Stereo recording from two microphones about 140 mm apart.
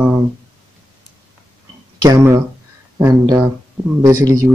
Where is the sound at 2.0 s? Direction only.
25° right (ahead or behind).